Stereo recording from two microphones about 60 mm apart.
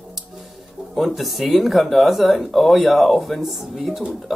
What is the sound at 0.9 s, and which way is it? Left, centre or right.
Speech, centre.